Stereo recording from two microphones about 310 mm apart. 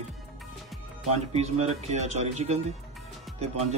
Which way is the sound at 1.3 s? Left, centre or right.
Right.